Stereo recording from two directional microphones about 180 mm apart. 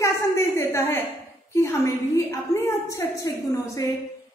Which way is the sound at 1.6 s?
15° left (ahead or behind).